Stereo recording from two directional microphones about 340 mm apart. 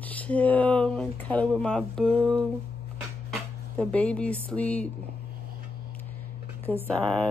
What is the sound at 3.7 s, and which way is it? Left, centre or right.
Speech, centre.